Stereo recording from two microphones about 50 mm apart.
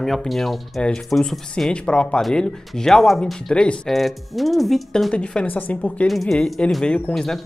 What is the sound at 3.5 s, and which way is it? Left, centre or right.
Speech, left.